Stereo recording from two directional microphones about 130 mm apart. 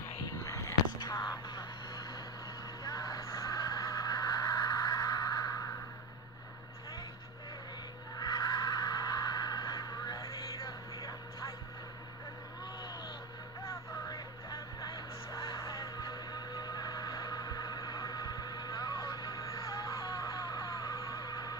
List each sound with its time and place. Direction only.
0.3 s a sound: 25° left (ahead or behind)
8.2 s neigh: 30° left (ahead or behind)
13.7 s music: 30° left (ahead or behind)